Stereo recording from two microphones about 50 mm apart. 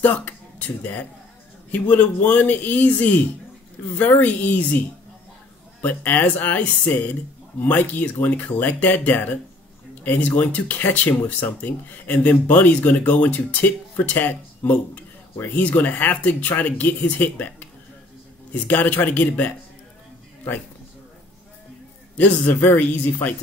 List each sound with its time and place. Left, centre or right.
0.0 s speech: left
5.8 s speech: left
7.6 s speech: left
18.7 s speech: left
22.5 s speech: left